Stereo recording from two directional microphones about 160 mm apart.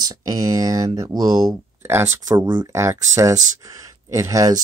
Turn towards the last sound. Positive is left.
turn(degrees=-20)  # may be behind; listen again after turning